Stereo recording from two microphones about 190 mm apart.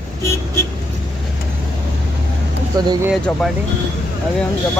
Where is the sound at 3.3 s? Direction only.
5° left (ahead or behind).